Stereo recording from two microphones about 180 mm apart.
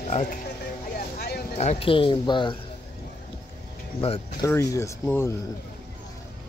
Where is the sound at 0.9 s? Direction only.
60° left (ahead or behind).